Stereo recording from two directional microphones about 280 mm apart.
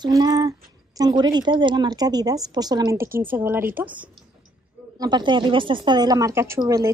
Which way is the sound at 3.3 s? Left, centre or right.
Centre.